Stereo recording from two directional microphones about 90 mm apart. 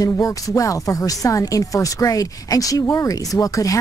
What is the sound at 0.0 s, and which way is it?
Speech, 40° left (ahead or behind).